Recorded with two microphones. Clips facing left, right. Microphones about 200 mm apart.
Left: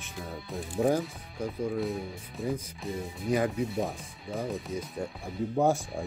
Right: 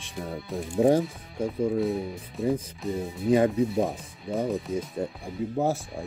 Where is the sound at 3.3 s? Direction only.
30° right (ahead or behind).